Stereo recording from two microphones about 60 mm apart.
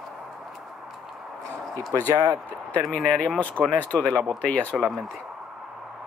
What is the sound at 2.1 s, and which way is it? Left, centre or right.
Speech, right.